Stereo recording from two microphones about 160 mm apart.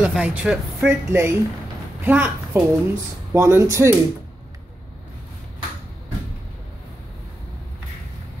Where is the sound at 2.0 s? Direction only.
10° right (ahead or behind).